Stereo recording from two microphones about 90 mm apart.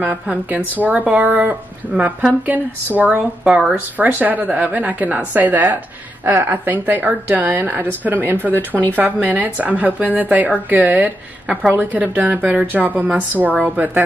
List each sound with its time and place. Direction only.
0.0 s a woman's voice: 20° right (ahead or behind)